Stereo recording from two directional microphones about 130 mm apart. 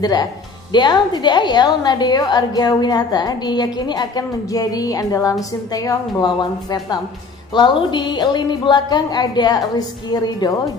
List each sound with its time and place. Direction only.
0.0 s a woman's voice: 30° left (ahead or behind)